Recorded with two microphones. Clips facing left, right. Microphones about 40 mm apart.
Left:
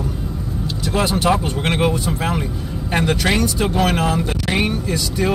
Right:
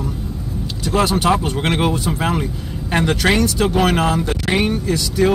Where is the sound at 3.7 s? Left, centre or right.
Centre.